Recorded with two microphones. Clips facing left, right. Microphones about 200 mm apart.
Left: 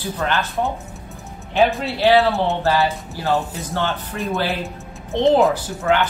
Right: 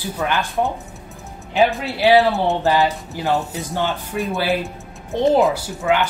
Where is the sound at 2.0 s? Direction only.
15° right (ahead or behind).